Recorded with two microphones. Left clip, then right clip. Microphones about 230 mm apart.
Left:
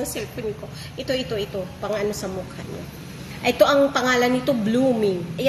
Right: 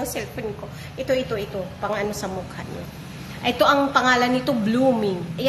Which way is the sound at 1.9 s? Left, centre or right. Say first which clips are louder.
Left 2 dB; centre.